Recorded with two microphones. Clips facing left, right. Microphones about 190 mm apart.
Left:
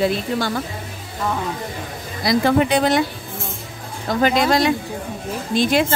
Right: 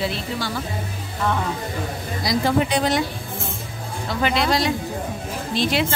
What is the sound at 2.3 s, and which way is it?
Speech, 60° left (ahead or behind).